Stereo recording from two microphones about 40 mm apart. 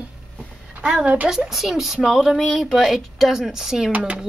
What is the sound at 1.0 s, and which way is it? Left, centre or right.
Speech, right.